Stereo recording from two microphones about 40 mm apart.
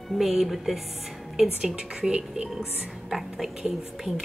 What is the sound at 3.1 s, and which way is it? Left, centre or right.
A woman's voice, centre.